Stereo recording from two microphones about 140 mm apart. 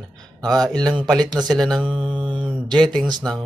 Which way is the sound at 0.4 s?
25° right (ahead or behind).